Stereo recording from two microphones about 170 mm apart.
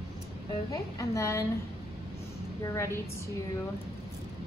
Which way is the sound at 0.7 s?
20° left (ahead or behind).